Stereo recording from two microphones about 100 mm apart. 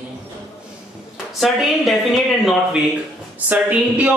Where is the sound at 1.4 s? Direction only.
Centre (ahead or behind).